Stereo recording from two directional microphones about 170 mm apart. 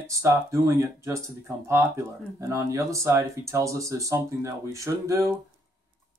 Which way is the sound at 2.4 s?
15° right (ahead or behind).